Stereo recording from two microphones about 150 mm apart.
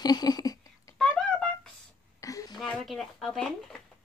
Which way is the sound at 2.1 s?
20° left (ahead or behind).